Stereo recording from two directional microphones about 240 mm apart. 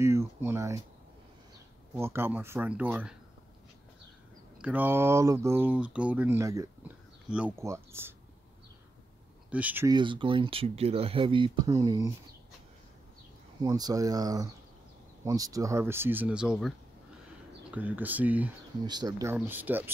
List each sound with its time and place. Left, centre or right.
0.0 s speech: centre
2.0 s speech: centre
4.6 s speech: centre
9.5 s speech: centre
13.6 s speech: centre
18.9 s speech: centre